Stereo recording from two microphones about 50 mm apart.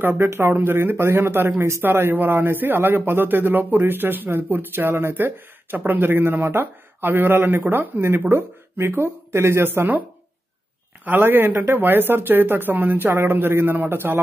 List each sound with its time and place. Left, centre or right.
0.0 s a man's voice: right
8.3 s speech: right
11.1 s a man's voice: right
13.1 s a man's voice: right